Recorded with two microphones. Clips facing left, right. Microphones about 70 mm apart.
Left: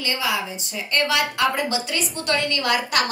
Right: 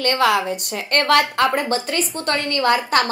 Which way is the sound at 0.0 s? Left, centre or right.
Right.